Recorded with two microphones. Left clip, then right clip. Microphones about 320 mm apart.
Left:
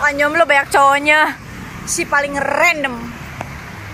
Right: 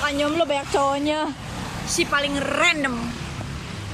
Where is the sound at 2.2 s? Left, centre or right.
Centre.